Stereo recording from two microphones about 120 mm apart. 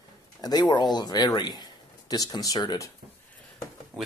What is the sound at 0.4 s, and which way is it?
Speech, 35° left (ahead or behind).